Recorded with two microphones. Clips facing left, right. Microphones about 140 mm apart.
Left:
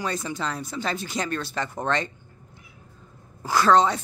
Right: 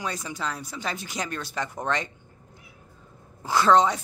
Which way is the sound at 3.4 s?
20° right (ahead or behind).